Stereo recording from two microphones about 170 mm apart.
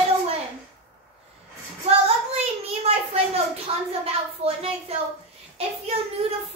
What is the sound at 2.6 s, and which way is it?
A child's voice, 35° right (ahead or behind).